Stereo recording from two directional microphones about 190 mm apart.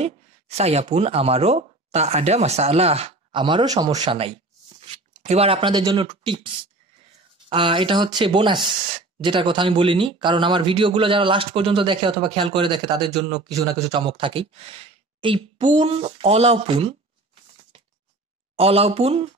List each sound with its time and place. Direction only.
0.0 s speech: 35° right (ahead or behind)
18.6 s speech: 30° right (ahead or behind)